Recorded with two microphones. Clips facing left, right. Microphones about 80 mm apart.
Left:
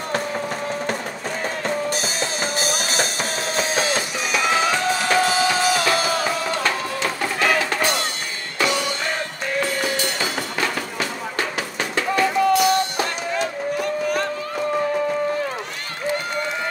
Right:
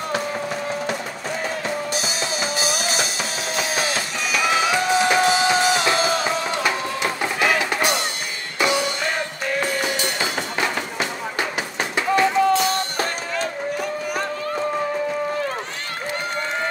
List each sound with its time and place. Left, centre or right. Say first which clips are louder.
2.6 s music: even; left
3.5 s music: left 2 dB; left
4.3 s music: even; centre
4.6 s music: right 1 dB; centre; by 13.5 s right